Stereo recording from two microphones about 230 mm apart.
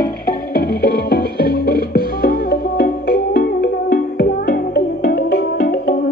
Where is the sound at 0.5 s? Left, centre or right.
Left.